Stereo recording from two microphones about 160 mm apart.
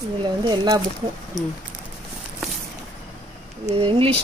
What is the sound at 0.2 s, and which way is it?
Speech, 30° right (ahead or behind).